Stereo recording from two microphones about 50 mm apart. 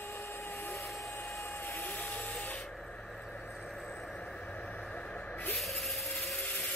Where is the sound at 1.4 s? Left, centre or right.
Left.